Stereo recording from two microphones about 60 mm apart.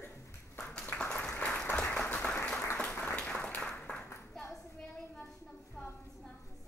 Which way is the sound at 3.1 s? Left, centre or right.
Centre.